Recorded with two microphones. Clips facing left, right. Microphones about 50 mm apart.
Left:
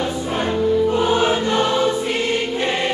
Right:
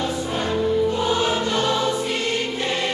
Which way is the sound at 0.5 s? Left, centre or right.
Left.